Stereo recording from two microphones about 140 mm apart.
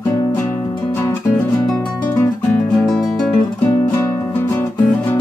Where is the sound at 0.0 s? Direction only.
15° left (ahead or behind).